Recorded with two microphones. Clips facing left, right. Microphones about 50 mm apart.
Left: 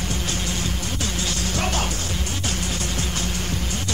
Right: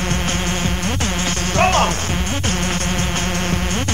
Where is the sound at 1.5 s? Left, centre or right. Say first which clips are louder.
Right 12 dB; right.